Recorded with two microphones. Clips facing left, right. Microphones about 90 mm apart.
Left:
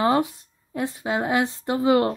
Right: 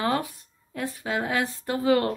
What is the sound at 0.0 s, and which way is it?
Speech, 25° left (ahead or behind).